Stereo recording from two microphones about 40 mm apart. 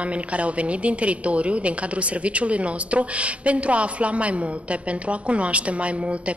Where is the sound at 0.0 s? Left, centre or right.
Right.